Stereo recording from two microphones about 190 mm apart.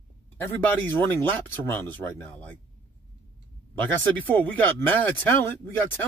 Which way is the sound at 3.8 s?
10° left (ahead or behind).